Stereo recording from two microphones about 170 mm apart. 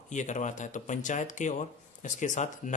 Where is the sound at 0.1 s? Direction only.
45° left (ahead or behind).